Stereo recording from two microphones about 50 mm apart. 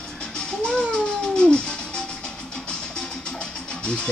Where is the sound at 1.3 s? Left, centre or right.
Centre.